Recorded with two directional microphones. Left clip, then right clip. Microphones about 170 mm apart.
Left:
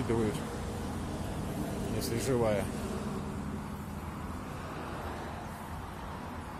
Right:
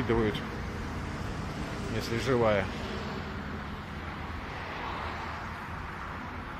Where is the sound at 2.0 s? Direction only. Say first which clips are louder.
Right 4 dB; 10° left (ahead or behind).